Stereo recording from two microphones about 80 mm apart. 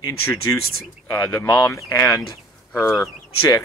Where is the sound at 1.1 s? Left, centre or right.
Left.